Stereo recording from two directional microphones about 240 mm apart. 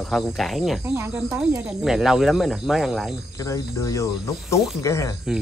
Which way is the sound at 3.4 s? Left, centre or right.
Centre.